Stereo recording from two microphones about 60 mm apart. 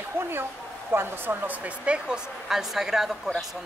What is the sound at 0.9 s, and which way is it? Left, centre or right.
A woman's voice, right.